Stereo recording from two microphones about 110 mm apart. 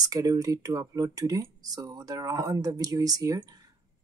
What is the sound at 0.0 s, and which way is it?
Speech, 30° right (ahead or behind).